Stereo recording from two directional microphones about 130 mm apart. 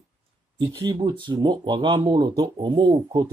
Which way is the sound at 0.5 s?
30° right (ahead or behind).